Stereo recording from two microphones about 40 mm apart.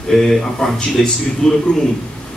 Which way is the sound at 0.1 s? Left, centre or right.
Centre.